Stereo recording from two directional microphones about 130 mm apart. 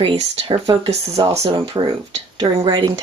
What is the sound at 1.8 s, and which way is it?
Speech, 30° right (ahead or behind).